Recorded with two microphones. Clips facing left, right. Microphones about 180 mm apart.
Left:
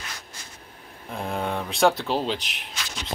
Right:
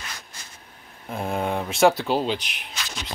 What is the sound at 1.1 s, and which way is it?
Speech, 5° right (ahead or behind).